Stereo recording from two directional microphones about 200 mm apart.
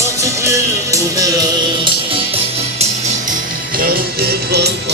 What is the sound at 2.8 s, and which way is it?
Music, 45° right (ahead or behind).